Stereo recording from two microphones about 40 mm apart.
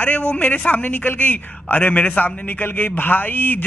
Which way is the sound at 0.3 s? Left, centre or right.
Left.